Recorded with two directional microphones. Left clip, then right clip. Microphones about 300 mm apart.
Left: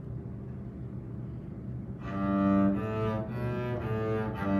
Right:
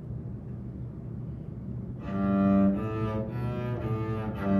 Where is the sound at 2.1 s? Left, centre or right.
Centre.